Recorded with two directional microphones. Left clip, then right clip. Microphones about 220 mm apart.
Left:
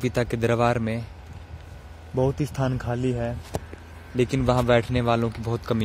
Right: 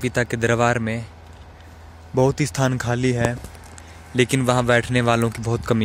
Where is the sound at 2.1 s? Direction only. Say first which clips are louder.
Right 6 dB; 10° right (ahead or behind).